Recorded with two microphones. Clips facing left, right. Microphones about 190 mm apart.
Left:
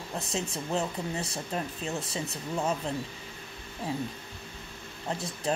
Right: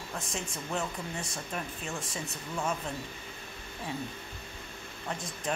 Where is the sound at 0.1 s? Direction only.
30° left (ahead or behind).